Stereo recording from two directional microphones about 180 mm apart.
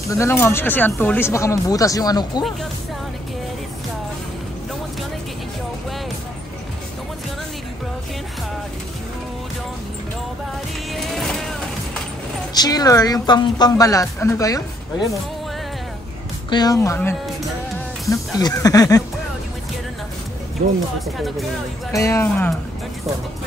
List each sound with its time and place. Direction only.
0.1 s speech: 15° left (ahead or behind)
10.9 s music: centre (ahead or behind)
12.5 s speech: 20° left (ahead or behind)
16.4 s speech: 20° left (ahead or behind)
18.1 s speech: 20° left (ahead or behind)
21.9 s speech: 15° left (ahead or behind)